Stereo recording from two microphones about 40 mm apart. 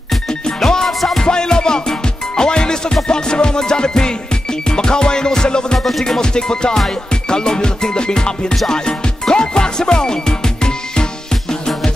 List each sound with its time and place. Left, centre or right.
0.3 s music: centre
5.8 s music: centre